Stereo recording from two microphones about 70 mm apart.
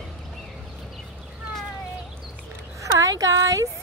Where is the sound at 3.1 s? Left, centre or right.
Right.